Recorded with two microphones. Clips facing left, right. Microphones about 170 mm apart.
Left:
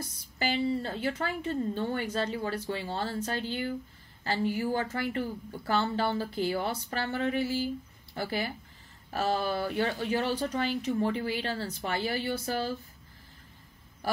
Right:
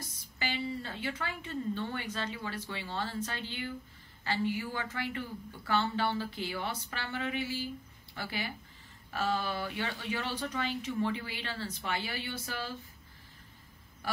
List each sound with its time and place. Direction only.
0.4 s speech: 40° left (ahead or behind)